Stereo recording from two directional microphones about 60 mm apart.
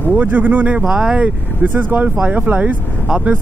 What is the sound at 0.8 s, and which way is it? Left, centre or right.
Speech, centre.